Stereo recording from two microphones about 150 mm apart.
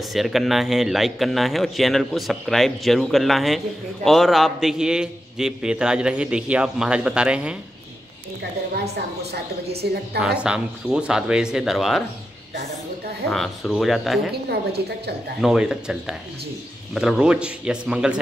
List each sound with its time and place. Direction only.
0.0 s speech: centre (ahead or behind)
9.8 s a woman's voice: 90° right
10.2 s speech: 5° right (ahead or behind)
13.3 s speech: centre (ahead or behind)
14.3 s a woman's voice: 90° right
15.4 s speech: 5° right (ahead or behind)